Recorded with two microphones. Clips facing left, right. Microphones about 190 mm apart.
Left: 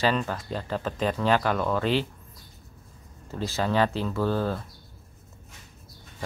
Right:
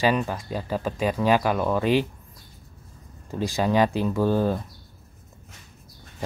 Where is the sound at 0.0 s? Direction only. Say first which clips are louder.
Right 3 dB; 15° right (ahead or behind).